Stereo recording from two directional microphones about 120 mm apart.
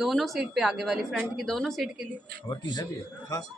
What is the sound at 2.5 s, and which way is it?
Speech, 35° left (ahead or behind).